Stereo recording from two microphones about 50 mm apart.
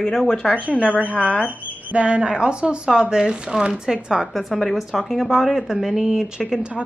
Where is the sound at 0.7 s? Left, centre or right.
Left.